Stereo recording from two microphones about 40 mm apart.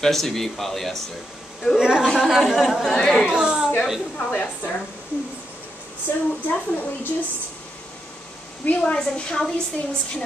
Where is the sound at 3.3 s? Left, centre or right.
Right.